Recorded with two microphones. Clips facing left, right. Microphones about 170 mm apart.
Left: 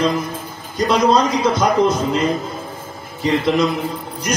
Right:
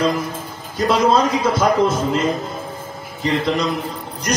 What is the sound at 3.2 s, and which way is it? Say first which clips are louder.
Speech: left 3 dB; centre (ahead or behind).